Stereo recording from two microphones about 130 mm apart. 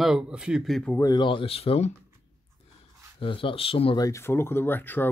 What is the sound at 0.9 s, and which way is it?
Speech, 25° left (ahead or behind).